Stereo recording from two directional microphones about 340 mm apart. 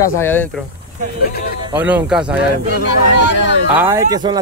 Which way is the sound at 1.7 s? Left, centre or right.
Centre.